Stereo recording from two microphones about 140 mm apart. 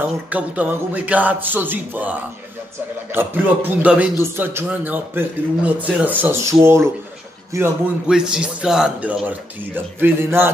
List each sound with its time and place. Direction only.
0.3 s a man's voice: 10° right (ahead or behind)
8.1 s a man's voice: 5° right (ahead or behind)